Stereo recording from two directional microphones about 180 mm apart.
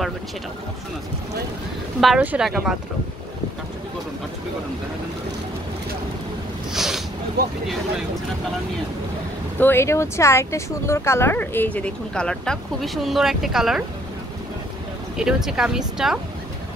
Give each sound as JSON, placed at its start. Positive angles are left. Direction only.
{"t": 2.0, "sound": "speech", "side_deg": -5}
{"t": 6.7, "sound": "a sound", "side_deg": 0}
{"t": 7.4, "sound": "speech", "side_deg": -55}
{"t": 9.6, "sound": "speech", "side_deg": 15}
{"t": 15.1, "sound": "speech", "side_deg": -5}